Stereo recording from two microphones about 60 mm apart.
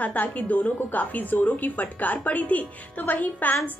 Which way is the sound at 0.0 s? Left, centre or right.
Left.